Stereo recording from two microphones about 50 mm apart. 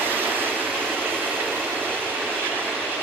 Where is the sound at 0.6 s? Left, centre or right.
Centre.